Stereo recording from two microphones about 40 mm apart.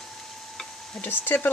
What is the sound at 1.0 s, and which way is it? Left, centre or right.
Speech, left.